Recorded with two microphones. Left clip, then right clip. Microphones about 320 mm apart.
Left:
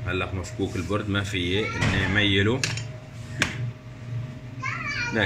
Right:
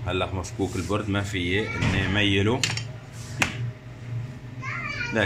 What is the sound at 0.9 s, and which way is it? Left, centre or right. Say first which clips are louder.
Speech: even; centre.